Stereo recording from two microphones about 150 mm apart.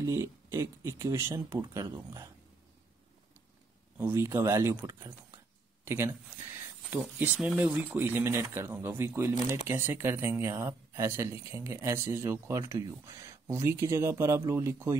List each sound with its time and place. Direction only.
0.0 s speech: 20° right (ahead or behind)
4.0 s speech: 15° right (ahead or behind)